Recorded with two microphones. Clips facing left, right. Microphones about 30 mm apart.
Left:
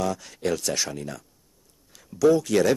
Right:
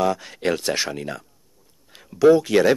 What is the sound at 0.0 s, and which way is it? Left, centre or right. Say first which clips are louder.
Speech: right 5 dB; right.